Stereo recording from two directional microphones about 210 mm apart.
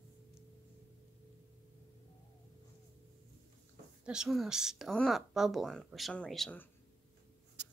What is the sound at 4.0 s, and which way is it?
Speech, 5° right (ahead or behind).